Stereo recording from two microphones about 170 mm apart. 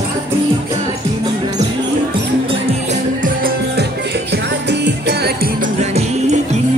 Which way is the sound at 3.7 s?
80° right.